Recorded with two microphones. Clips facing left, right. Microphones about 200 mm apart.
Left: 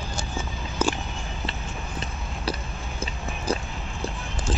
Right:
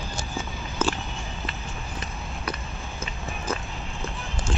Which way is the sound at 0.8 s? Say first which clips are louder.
Left 1 dB; 10° left (ahead or behind).